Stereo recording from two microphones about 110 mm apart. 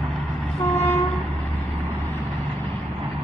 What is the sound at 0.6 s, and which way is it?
Train, 20° left (ahead or behind).